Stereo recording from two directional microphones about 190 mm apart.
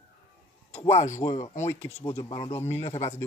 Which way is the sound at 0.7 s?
35° left (ahead or behind).